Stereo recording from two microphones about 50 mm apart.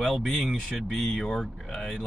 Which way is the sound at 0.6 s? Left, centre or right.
Centre.